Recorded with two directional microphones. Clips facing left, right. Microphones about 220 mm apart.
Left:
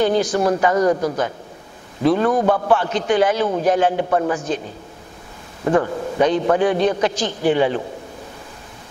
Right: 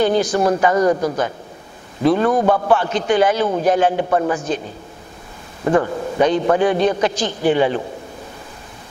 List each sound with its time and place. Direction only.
0.0 s a man's voice: 10° right (ahead or behind)
0.3 s a man's voice: 25° right (ahead or behind)
2.0 s a man's voice: 15° right (ahead or behind)
5.6 s a man's voice: 20° right (ahead or behind)